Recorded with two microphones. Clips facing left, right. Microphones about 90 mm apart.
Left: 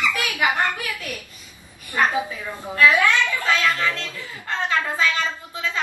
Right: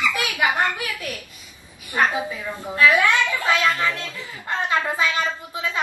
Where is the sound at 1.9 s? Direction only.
15° right (ahead or behind).